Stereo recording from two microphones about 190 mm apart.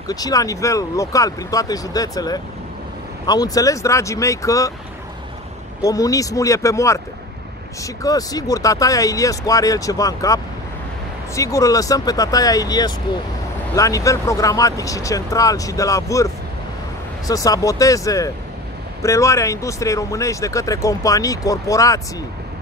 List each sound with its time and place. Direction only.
0.1 s speech: 20° left (ahead or behind)
5.8 s speech: 20° left (ahead or behind)
17.3 s speech: 20° left (ahead or behind)